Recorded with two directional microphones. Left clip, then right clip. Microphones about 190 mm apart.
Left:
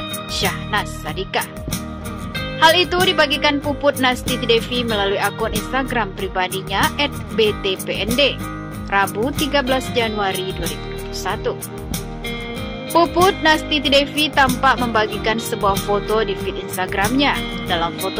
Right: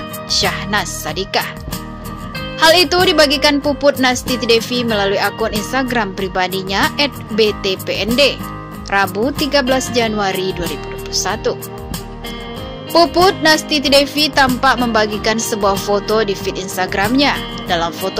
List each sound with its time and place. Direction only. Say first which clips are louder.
0.3 s speech: right 5 dB; 20° right (ahead or behind)
2.6 s speech: right 3 dB; 20° right (ahead or behind)
12.9 s speech: right 3 dB; 20° right (ahead or behind)